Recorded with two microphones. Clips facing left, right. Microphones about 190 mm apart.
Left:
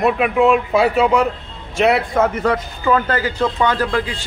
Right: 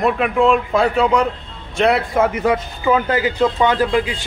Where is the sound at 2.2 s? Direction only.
15° right (ahead or behind).